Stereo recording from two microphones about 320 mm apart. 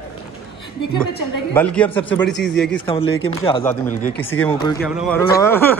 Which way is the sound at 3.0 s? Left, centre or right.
Left.